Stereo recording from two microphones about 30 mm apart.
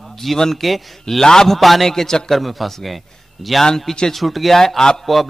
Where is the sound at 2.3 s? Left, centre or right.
Centre.